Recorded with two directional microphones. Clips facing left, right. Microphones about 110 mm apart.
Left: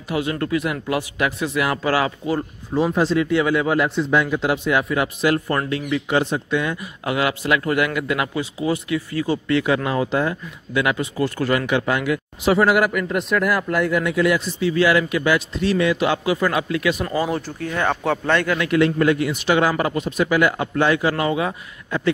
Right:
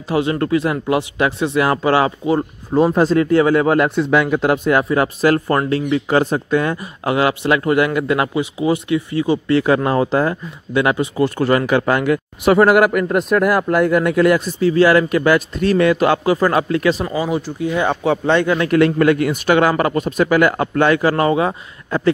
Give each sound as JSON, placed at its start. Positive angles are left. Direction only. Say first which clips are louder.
{"t": 0.1, "sound": "speech", "louder": "right 5 dB", "side_deg": -30}
{"t": 2.7, "sound": "speech", "louder": "right 5 dB", "side_deg": -45}
{"t": 9.5, "sound": "speech", "louder": "right 5 dB", "side_deg": -35}
{"t": 17.0, "sound": "speech", "louder": "right 2 dB", "side_deg": -10}
{"t": 18.7, "sound": "speech", "louder": "right 3 dB", "side_deg": -55}